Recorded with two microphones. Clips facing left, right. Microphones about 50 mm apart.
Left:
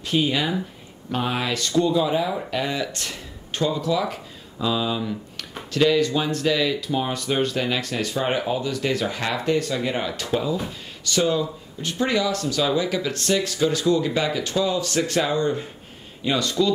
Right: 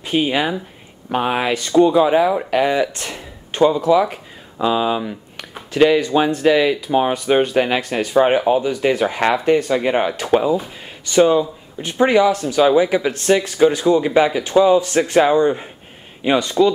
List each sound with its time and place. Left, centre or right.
0.0 s speech: right
2.9 s speech: right